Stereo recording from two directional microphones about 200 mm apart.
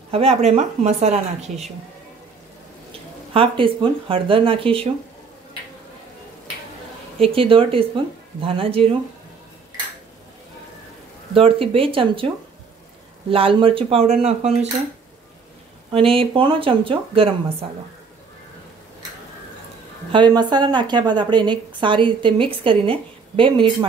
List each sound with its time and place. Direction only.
0.1 s speech: 30° right (ahead or behind)
3.3 s a woman's voice: 25° right (ahead or behind)
7.2 s a woman's voice: 30° right (ahead or behind)
11.3 s a woman's voice: 25° right (ahead or behind)
13.3 s a woman's voice: 25° right (ahead or behind)
15.9 s a woman's voice: 25° right (ahead or behind)
20.1 s a woman's voice: 25° right (ahead or behind)